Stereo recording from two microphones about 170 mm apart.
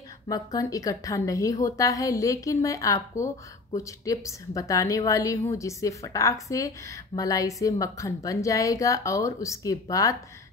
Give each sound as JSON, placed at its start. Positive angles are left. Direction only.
{"t": 0.3, "sound": "a woman's voice", "side_deg": 20}